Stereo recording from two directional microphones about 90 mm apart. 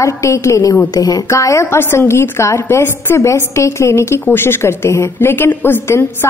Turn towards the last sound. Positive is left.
turn(degrees=25)  # may be behind; listen again after turning